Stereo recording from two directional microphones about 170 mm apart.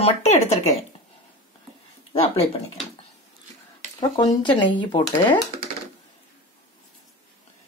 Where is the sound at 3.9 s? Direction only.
25° left (ahead or behind).